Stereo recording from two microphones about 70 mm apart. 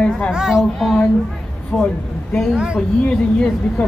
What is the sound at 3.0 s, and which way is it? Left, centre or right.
Speech, centre.